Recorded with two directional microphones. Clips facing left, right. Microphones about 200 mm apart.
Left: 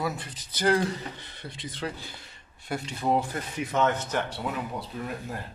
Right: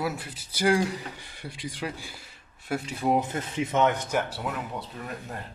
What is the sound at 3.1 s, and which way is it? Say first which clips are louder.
Speech: right 2 dB; 25° right (ahead or behind).